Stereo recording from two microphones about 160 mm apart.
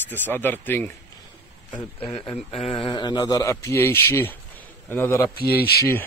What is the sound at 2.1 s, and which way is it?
Speech, 40° left (ahead or behind).